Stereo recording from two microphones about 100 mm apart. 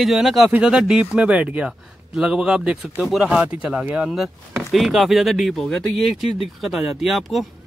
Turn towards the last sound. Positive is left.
turn(degrees=0)  # may be behind; listen again after turning